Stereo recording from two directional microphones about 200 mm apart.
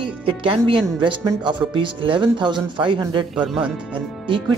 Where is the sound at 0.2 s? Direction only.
25° right (ahead or behind).